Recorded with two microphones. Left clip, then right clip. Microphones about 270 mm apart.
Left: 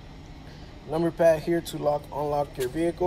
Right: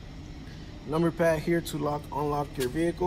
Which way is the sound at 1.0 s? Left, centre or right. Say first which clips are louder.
Left 4 dB; centre.